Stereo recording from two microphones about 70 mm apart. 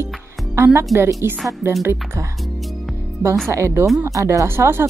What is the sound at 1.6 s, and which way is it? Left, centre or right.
Speech, right.